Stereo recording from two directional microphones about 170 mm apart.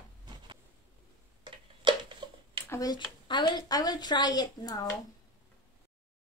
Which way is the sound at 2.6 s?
20° left (ahead or behind).